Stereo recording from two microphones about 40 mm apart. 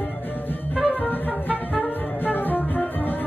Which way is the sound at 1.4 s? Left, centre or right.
Left.